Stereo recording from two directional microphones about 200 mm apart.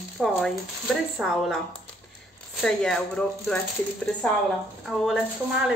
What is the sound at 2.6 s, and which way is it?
Speech, centre (ahead or behind).